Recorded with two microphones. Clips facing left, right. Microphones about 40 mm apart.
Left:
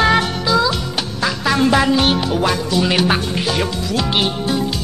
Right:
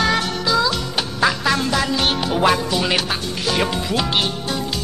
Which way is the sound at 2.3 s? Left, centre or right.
Centre.